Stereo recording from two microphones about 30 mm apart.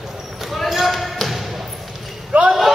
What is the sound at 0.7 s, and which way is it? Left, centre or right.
Basketball bounce, centre.